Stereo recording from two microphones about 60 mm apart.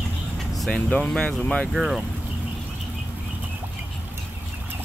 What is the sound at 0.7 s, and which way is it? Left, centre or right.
Speech, centre.